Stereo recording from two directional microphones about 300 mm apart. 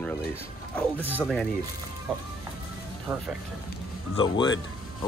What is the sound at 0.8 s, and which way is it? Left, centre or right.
Speech, centre.